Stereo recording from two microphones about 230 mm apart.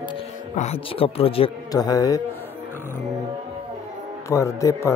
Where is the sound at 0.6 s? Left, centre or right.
Left.